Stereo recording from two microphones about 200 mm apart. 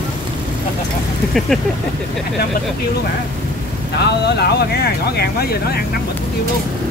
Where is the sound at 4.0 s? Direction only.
55° left (ahead or behind).